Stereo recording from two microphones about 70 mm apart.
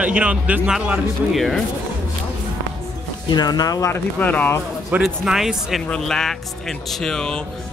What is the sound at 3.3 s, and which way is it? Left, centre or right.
Speech, left.